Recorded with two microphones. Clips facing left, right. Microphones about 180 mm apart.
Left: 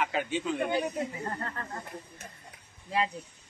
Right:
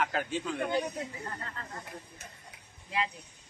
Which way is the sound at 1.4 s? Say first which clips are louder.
Left 5 dB; 50° left (ahead or behind).